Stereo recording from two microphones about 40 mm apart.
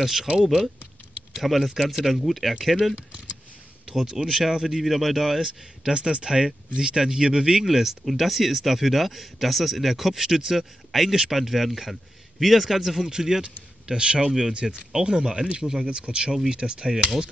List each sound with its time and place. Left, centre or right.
0.0 s speech: centre
1.3 s speech: centre
3.9 s speech: centre
5.9 s speech: right